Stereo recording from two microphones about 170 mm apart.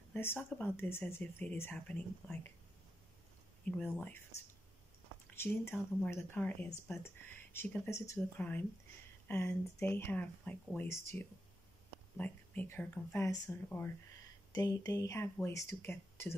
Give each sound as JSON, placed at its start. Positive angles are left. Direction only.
{"t": 0.1, "sound": "speech", "side_deg": 15}
{"t": 3.6, "sound": "speech", "side_deg": 5}
{"t": 5.3, "sound": "speech", "side_deg": 15}